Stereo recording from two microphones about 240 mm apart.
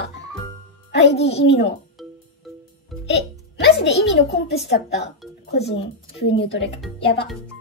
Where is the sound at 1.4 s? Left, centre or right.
Left.